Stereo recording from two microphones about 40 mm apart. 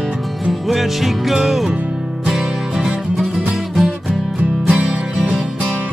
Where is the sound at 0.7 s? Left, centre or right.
Centre.